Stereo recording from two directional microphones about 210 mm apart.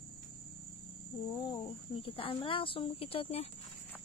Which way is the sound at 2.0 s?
25° left (ahead or behind).